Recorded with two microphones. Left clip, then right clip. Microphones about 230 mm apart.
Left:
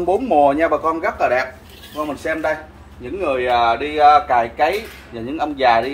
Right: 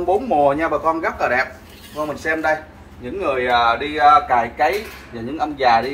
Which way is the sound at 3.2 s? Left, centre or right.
Left.